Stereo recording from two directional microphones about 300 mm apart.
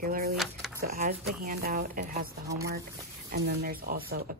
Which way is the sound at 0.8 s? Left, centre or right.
Right.